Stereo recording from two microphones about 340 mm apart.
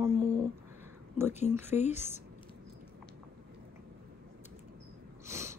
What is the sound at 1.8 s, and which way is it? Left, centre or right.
Speech, centre.